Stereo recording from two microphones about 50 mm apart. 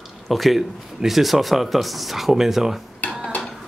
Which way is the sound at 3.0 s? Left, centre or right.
Left.